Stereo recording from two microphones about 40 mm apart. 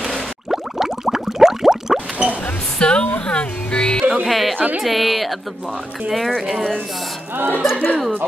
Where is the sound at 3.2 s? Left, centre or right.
Left.